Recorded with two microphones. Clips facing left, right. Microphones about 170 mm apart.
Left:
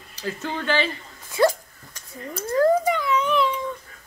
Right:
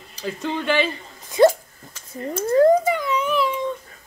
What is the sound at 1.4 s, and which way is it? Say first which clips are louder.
Hiccup: right 5 dB; 25° right (ahead or behind).